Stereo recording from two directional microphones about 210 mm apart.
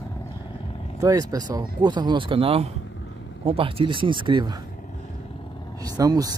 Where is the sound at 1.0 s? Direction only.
15° right (ahead or behind).